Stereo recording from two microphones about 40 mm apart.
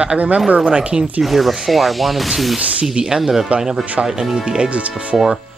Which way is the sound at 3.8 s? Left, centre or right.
Right.